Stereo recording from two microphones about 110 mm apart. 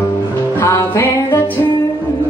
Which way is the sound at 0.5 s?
25° left (ahead or behind).